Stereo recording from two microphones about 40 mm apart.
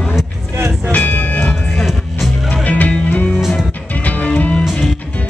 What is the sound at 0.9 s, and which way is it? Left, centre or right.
Music, left.